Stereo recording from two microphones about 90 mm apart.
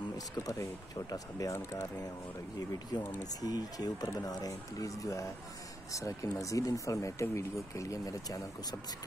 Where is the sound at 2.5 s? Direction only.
50° left (ahead or behind).